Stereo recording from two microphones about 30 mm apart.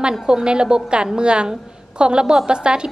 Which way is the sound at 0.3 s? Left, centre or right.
Right.